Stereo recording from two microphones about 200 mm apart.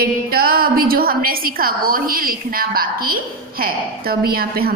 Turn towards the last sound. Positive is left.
turn(degrees=-50)  # may be behind; listen again after turning